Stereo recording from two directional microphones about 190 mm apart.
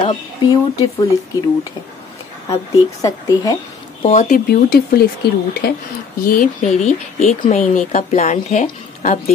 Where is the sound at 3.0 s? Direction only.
20° left (ahead or behind).